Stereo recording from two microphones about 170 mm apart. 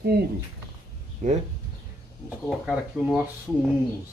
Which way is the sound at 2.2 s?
5° right (ahead or behind).